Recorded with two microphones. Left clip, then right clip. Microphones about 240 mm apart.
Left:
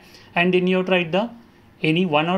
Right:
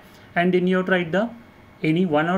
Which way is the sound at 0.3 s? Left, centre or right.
Centre.